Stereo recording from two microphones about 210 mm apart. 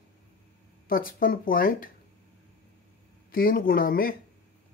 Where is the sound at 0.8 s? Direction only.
40° left (ahead or behind).